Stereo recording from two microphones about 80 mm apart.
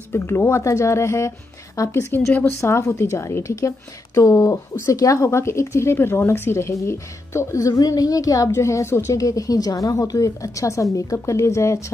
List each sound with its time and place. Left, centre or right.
0.1 s a woman's voice: left